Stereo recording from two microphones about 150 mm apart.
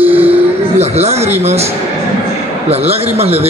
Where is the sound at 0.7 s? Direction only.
45° right (ahead or behind).